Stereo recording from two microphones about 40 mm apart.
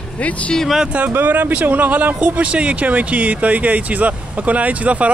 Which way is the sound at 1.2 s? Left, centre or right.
Right.